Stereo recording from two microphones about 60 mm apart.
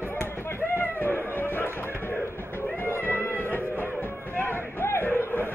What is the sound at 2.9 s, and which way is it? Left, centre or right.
Music, left.